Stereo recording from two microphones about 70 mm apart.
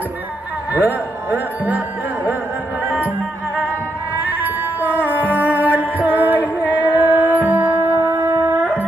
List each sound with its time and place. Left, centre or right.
0.7 s speech: right
2.9 s music: right